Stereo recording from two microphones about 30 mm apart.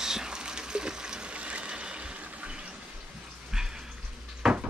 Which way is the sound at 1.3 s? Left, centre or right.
Right.